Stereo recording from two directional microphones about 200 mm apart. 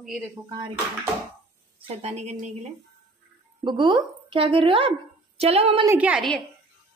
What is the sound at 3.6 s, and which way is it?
A woman's voice, 25° right (ahead or behind).